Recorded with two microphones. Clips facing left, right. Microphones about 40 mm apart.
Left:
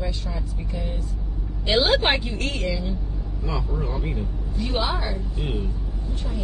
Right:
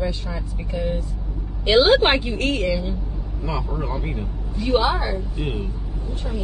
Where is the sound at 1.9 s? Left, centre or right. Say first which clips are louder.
Right 4 dB; right.